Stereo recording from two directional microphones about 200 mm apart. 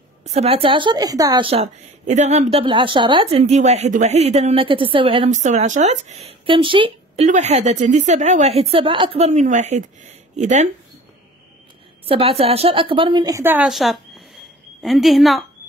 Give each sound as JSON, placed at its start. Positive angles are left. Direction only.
{"t": 0.2, "sound": "a woman's voice", "side_deg": -30}
{"t": 7.2, "sound": "a woman's voice", "side_deg": -35}
{"t": 12.1, "sound": "a woman's voice", "side_deg": -30}